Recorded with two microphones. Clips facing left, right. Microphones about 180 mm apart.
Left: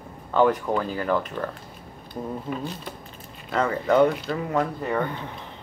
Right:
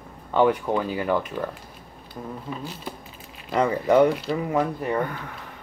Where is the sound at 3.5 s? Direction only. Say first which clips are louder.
Right 2 dB; 15° right (ahead or behind).